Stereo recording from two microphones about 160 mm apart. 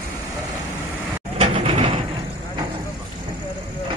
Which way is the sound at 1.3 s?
35° right (ahead or behind).